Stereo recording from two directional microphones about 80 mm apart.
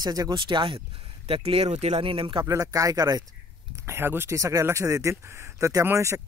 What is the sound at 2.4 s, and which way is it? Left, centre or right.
Speech, right.